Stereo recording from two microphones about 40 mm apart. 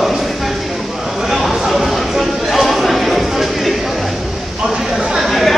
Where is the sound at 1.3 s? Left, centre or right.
Centre.